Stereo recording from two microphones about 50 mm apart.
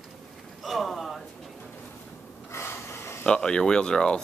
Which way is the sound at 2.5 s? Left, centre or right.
Left.